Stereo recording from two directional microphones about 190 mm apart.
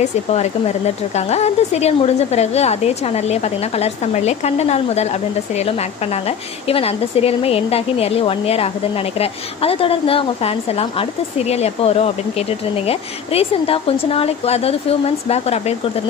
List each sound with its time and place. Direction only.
0.3 s speech: 35° left (ahead or behind)